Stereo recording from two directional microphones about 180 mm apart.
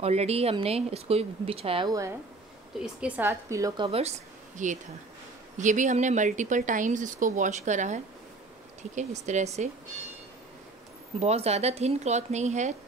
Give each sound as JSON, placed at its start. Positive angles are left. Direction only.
{"t": 0.0, "sound": "speech", "side_deg": -35}
{"t": 2.8, "sound": "a woman's voice", "side_deg": -10}
{"t": 3.8, "sound": "speech", "side_deg": -35}
{"t": 11.1, "sound": "speech", "side_deg": -35}